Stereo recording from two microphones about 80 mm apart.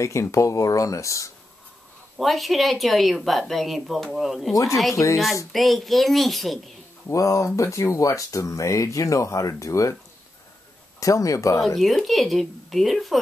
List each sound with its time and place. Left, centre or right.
0.0 s speech: left
2.1 s a woman's voice: centre
4.9 s speech: left
5.5 s a woman's voice: centre
7.1 s speech: left
11.0 s speech: left
11.8 s a woman's voice: centre